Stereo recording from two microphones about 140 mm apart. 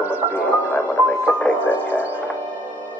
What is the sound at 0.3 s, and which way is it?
Music, 15° left (ahead or behind).